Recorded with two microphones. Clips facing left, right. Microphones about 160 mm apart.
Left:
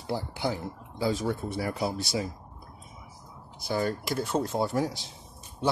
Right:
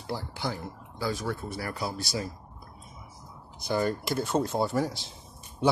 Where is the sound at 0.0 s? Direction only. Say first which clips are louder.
Left 3 dB; 15° left (ahead or behind).